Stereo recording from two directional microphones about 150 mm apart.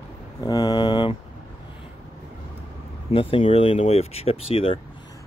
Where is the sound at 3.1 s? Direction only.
35° left (ahead or behind).